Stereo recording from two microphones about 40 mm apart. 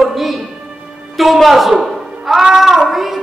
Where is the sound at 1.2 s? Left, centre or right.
Centre.